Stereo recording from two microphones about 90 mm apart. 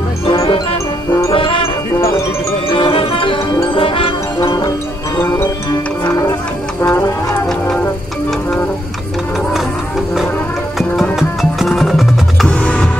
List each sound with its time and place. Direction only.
0.2 s music: 90° left
2.7 s music: 75° left (ahead or behind)
4.6 s music: 45° left (ahead or behind)
11.1 s music: centre (ahead or behind)
12.4 s music: 10° left (ahead or behind)